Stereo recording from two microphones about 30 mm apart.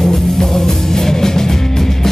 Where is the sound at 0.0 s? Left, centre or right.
Centre.